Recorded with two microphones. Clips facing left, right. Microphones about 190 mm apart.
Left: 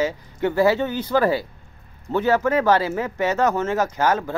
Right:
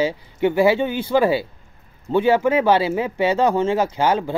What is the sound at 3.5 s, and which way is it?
Speech, 30° right (ahead or behind).